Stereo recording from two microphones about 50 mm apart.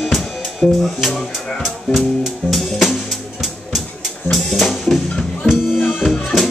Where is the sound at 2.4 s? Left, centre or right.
Centre.